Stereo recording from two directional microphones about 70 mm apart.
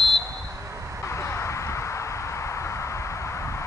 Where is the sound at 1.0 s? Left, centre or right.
Left.